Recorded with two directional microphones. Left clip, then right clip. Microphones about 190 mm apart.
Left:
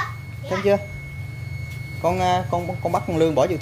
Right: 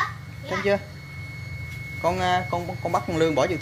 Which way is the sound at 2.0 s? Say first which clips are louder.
Left 3 dB; 15° left (ahead or behind).